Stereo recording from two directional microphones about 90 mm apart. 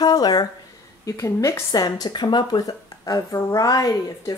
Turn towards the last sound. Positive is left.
turn(degrees=45)  # may be behind; listen again after turning